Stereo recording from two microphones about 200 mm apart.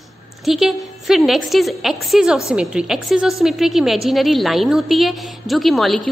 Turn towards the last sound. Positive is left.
turn(degrees=0)  # may be behind; listen again after turning